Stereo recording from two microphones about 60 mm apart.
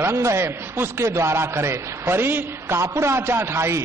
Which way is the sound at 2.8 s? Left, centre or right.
Right.